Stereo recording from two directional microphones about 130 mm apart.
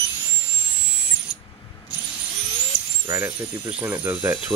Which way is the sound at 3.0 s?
20° right (ahead or behind).